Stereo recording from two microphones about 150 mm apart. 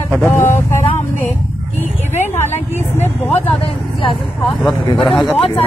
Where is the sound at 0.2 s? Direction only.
15° left (ahead or behind).